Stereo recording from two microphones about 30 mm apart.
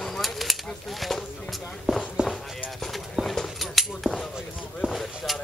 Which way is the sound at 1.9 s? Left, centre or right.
Right.